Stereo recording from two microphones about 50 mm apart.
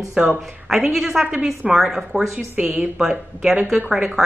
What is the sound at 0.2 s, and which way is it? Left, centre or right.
Speech, centre.